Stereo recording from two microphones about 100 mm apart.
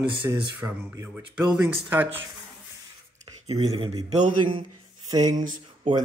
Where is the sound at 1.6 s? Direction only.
20° right (ahead or behind).